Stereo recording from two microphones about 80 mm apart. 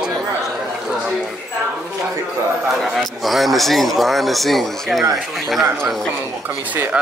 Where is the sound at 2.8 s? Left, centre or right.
Centre.